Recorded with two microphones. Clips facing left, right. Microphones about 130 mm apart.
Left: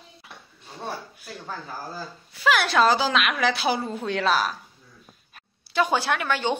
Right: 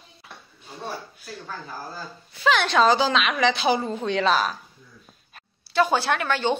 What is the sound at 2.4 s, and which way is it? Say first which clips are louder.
A woman's voice: right 1 dB; 5° left (ahead or behind).